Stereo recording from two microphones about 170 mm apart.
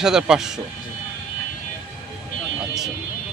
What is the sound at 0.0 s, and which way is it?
Speech, 5° right (ahead or behind).